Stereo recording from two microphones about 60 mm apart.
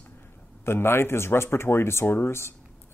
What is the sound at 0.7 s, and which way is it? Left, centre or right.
Speech, left.